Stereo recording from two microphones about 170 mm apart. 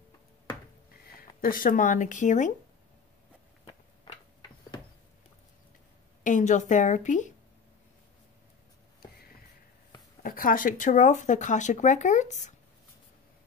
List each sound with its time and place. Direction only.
1.0 s speech: 55° left (ahead or behind)
6.2 s speech: 45° left (ahead or behind)
10.2 s speech: 55° left (ahead or behind)